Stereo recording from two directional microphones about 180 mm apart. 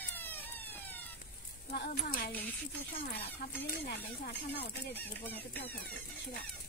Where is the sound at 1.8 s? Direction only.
65° left (ahead or behind).